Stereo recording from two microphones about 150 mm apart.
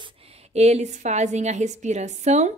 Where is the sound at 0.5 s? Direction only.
45° right (ahead or behind).